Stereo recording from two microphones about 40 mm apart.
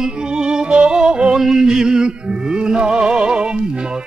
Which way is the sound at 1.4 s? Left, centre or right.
Centre.